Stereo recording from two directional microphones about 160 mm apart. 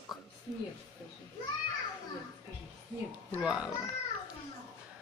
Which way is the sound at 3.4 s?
5° right (ahead or behind).